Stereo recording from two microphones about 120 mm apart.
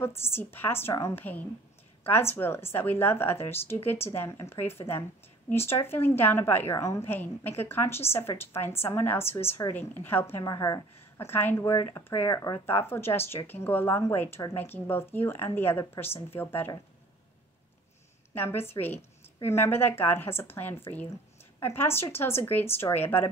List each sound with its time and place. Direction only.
0.0 s a woman's voice: 20° left (ahead or behind)
10.4 s a woman's voice: 30° left (ahead or behind)
11.0 s a woman's voice: 20° left (ahead or behind)
18.3 s a woman's voice: 15° left (ahead or behind)